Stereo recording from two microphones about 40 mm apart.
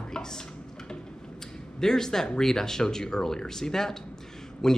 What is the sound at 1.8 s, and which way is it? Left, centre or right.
Speech, centre.